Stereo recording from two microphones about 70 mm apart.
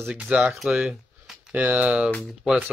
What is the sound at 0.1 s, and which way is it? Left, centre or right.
Speech, centre.